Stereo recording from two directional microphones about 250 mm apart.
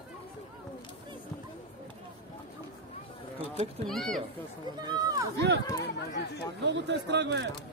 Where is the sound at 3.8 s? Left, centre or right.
Centre.